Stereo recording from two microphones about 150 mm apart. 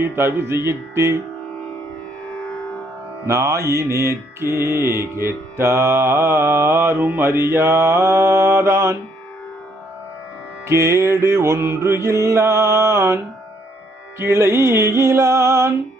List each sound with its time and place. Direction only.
0.0 s mantra: 15° right (ahead or behind)
3.3 s mantra: 20° right (ahead or behind)
10.7 s mantra: 20° right (ahead or behind)